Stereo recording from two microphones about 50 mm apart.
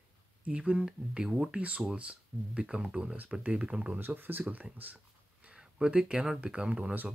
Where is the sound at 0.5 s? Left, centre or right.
Right.